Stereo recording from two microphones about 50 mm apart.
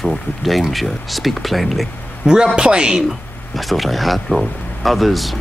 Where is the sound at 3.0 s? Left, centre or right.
Centre.